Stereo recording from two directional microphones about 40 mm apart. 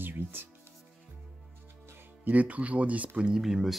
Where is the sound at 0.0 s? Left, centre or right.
Right.